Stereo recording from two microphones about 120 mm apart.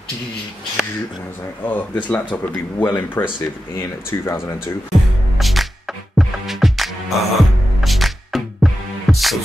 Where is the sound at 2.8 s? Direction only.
15° left (ahead or behind).